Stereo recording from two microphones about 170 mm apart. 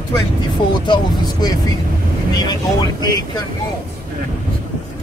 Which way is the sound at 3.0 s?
25° left (ahead or behind).